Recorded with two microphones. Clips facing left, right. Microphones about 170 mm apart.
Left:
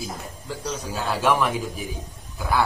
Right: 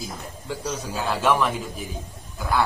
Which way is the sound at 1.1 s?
10° left (ahead or behind).